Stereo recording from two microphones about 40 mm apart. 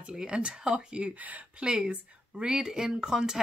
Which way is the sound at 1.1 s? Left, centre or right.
Right.